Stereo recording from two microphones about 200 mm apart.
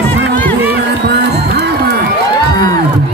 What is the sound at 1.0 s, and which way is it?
Music, 55° right (ahead or behind).